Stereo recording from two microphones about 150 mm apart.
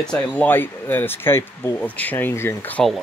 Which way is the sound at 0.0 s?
5° left (ahead or behind).